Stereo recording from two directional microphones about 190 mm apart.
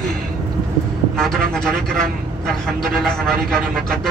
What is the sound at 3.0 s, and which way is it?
Speech, centre (ahead or behind).